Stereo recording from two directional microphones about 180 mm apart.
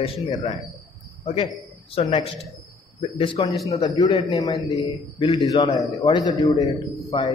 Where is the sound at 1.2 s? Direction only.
30° left (ahead or behind).